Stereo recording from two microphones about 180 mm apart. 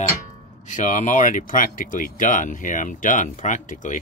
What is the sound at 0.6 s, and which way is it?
Speech, 45° left (ahead or behind).